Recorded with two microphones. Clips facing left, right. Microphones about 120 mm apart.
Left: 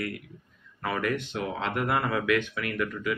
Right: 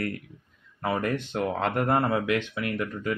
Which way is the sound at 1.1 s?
45° right (ahead or behind).